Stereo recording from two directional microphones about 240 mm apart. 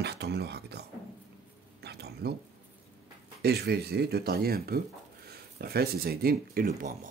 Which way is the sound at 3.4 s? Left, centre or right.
Right.